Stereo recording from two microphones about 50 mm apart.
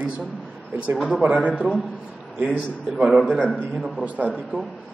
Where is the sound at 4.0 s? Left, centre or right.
Right.